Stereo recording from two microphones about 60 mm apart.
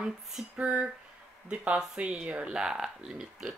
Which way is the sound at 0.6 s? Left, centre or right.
Centre.